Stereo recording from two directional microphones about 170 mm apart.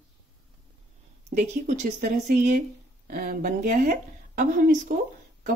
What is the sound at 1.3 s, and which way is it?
Speech, 45° right (ahead or behind).